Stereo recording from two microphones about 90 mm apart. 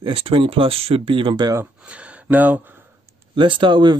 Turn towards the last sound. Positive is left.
turn(degrees=-60)  # may be behind; listen again after turning